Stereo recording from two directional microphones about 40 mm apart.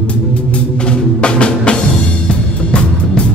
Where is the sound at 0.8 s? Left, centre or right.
Left.